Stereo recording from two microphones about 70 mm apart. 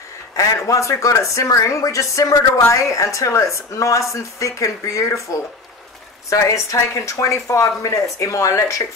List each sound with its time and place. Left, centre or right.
0.4 s speech: left
6.3 s speech: left